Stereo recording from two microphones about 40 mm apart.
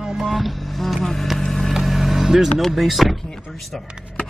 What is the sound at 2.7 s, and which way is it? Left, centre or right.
Speech, centre.